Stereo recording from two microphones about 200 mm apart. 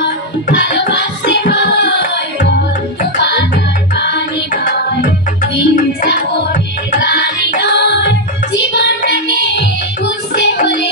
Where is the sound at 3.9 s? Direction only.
60° left (ahead or behind).